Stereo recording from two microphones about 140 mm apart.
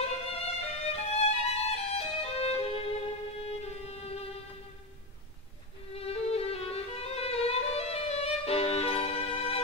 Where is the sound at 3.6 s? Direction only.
50° left (ahead or behind).